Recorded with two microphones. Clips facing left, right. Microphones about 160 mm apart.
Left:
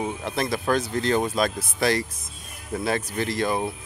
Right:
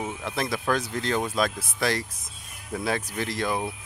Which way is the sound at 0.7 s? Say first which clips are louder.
Left 5 dB; 5° left (ahead or behind).